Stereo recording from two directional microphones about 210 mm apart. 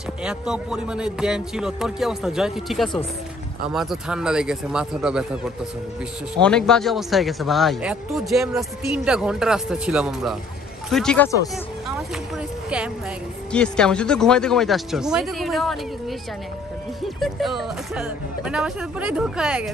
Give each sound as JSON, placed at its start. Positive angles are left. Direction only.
{"t": 0.2, "sound": "speech", "side_deg": -5}
{"t": 6.4, "sound": "speech", "side_deg": 5}
{"t": 12.6, "sound": "speech", "side_deg": -5}
{"t": 17.2, "sound": "speech", "side_deg": 0}